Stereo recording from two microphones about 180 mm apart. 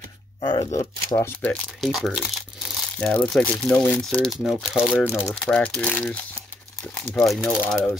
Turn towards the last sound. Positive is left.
turn(degrees=5)  # may be behind; listen again after turning